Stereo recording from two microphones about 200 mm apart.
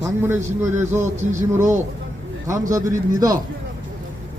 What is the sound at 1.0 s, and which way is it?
Music, 35° right (ahead or behind).